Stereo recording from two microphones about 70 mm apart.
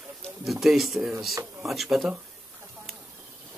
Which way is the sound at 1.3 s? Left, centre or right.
Right.